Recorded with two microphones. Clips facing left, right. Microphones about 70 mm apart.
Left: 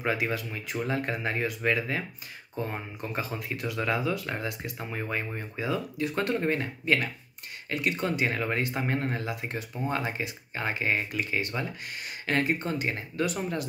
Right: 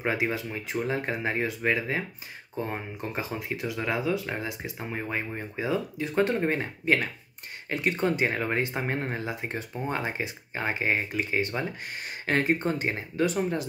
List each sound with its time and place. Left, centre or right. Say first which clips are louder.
0.0 s speech: right 1 dB; right